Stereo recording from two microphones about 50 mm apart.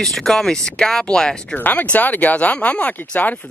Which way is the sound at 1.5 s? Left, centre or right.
Left.